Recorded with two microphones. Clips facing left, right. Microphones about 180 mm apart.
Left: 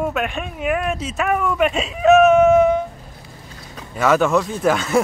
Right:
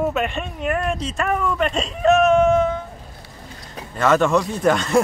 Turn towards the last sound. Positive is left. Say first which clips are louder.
# even
turn(degrees=0)  # may be behind; listen again after turning